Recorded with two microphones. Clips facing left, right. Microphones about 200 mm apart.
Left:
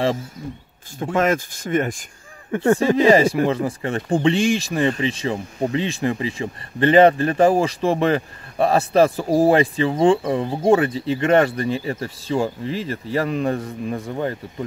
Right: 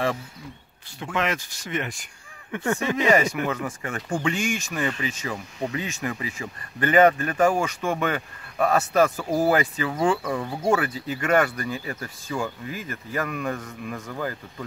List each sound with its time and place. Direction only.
0.9 s speech: 45° left (ahead or behind)
2.5 s speech: 35° left (ahead or behind)